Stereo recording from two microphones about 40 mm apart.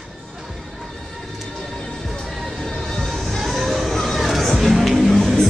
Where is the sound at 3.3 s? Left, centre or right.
Centre.